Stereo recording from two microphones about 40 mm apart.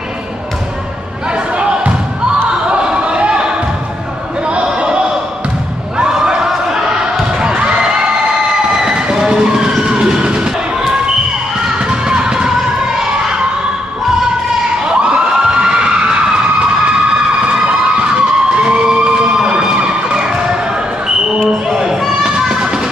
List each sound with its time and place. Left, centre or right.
1.6 s basketball bounce: right
2.7 s a sound: right
4.5 s sheep: right
5.9 s a sound: centre
7.3 s a sound: right
8.7 s vehicle: centre
11.9 s music: centre
14.9 s crowd: right
15.4 s emergency vehicle: right
17.5 s a sound: right
19.4 s emergency vehicle: right
22.5 s music: centre